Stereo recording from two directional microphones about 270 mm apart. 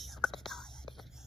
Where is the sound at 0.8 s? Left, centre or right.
Centre.